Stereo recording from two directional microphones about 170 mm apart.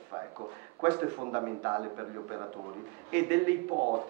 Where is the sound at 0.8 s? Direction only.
25° right (ahead or behind).